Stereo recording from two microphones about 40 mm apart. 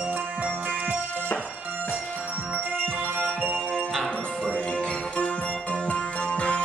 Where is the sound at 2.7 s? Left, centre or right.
Right.